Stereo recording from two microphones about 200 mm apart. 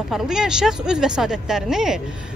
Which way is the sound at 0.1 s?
5° right (ahead or behind).